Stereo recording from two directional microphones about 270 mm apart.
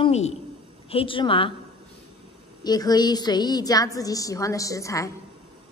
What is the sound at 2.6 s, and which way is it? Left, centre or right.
A woman's voice, centre.